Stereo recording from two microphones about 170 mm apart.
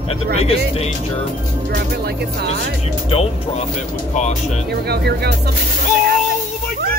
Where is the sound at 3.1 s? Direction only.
35° left (ahead or behind).